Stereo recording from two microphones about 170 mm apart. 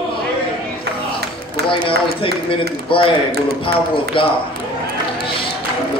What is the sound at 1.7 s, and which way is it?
Speech, 30° left (ahead or behind).